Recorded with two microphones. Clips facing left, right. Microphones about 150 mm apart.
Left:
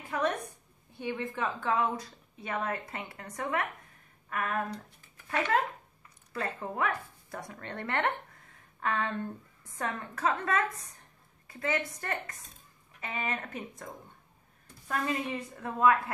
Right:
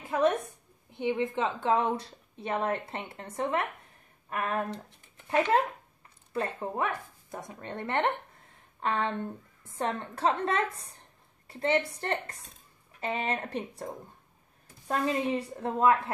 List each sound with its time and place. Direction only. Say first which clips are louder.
0.1 s a woman's voice: right 5 dB; 25° right (ahead or behind)